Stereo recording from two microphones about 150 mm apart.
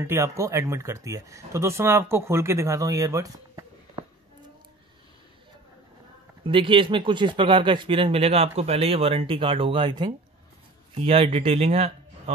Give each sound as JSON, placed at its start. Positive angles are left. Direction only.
{"t": 0.0, "sound": "speech", "side_deg": -20}
{"t": 6.4, "sound": "speech", "side_deg": -35}
{"t": 11.0, "sound": "speech", "side_deg": -40}